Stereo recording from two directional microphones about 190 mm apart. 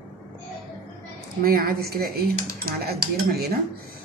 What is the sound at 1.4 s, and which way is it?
Speech, 50° right (ahead or behind).